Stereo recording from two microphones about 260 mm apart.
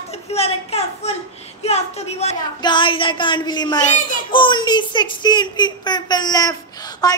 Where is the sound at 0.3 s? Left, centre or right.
Left.